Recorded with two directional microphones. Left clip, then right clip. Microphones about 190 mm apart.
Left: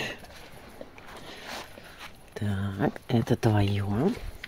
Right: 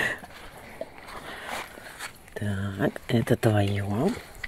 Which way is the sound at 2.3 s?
10° left (ahead or behind).